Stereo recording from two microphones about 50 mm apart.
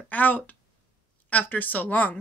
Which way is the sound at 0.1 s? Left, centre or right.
Left.